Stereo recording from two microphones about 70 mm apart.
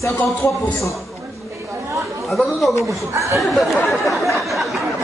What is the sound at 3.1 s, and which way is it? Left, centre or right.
Music, right.